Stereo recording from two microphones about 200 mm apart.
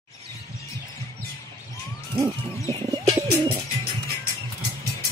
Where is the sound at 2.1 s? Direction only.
25° right (ahead or behind).